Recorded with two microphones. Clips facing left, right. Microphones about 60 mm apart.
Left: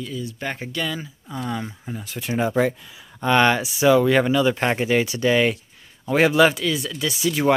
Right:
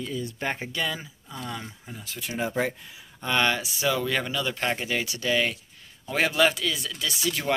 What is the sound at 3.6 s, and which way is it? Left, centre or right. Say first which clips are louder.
Speech: left 10 dB; left.